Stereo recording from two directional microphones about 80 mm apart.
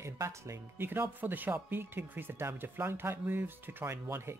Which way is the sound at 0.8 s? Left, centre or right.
Right.